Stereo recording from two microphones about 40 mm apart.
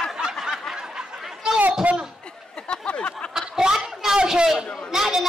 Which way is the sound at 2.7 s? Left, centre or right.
Left.